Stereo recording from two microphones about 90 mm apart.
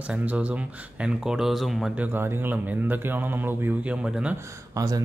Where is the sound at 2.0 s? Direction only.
20° right (ahead or behind).